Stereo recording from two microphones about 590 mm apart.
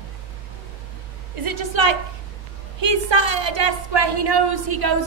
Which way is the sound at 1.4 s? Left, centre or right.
Right.